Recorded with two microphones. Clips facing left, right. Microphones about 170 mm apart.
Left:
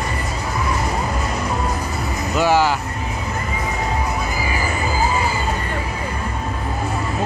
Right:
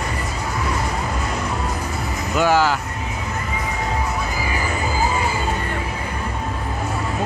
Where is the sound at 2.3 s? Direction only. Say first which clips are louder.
Left 1 dB; 10° left (ahead or behind).